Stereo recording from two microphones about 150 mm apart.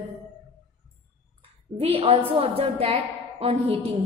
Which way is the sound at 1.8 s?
40° right (ahead or behind).